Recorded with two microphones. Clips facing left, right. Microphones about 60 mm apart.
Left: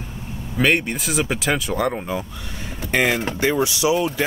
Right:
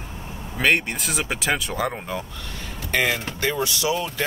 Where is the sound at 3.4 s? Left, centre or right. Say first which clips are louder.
Left 4 dB; centre.